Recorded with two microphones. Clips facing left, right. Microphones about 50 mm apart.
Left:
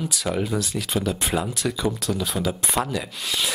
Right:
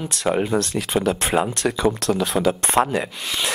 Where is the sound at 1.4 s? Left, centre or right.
Right.